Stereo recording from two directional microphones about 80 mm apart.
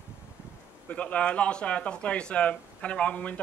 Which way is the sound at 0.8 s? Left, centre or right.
Centre.